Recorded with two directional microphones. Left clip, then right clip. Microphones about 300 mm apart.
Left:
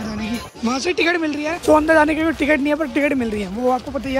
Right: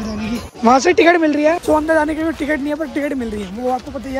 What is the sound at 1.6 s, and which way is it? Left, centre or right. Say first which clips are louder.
Speech: left 1 dB; left.